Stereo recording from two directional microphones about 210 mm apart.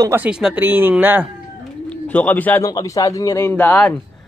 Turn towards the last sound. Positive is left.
turn(degrees=5)  # may be behind; listen again after turning